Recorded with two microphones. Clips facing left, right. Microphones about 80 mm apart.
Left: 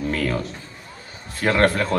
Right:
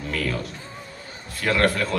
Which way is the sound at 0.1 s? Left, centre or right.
Left.